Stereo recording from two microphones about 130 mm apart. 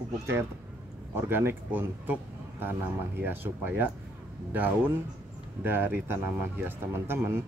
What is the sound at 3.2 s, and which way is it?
Speech, 15° right (ahead or behind).